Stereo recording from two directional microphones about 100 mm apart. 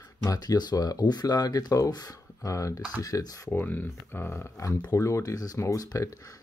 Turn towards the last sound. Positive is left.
turn(degrees=30)  # may be behind; listen again after turning